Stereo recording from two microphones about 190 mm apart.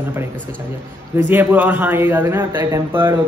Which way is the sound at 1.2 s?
10° right (ahead or behind).